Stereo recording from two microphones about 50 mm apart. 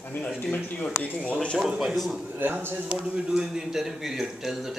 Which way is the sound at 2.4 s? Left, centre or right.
Right.